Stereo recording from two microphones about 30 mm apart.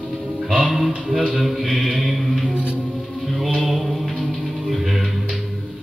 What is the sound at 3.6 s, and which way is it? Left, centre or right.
Music, centre.